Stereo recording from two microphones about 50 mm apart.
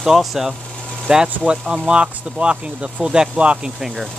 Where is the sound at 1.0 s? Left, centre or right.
Centre.